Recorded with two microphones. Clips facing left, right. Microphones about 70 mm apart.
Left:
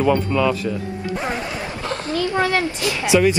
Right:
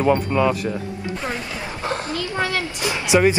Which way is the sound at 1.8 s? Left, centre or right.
Right.